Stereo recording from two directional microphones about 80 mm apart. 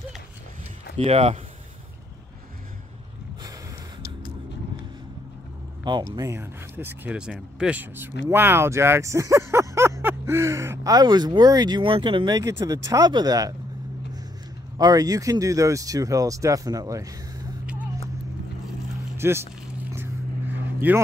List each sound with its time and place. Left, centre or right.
6.3 s speech: right
7.2 s speech: centre
7.8 s speech: right
10.9 s speech: right
12.4 s speech: right
14.8 s speech: right
19.1 s a sound: right
20.6 s vehicle: right